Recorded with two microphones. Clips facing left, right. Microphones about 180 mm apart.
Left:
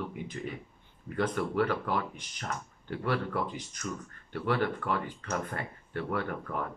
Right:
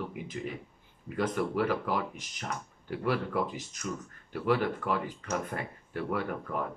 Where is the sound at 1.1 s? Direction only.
5° right (ahead or behind).